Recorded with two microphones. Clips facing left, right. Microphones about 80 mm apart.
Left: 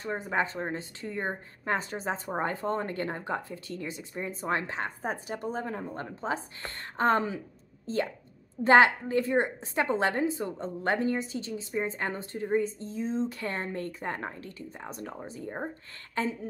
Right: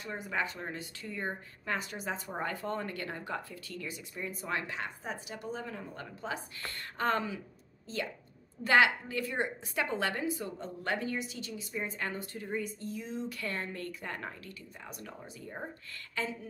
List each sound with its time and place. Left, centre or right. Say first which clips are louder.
0.0 s a woman's voice: left 6 dB; left